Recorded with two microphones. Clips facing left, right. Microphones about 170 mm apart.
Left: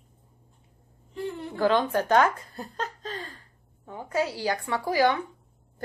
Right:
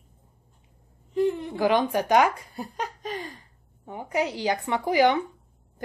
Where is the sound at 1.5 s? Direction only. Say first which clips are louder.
Left 3 dB; 15° right (ahead or behind).